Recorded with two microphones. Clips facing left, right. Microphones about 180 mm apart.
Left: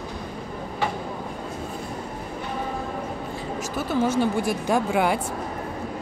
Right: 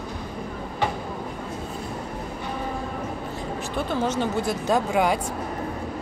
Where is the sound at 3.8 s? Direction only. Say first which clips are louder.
Left 3 dB; 10° left (ahead or behind).